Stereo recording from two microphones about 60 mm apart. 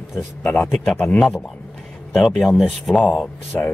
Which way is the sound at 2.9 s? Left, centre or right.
Left.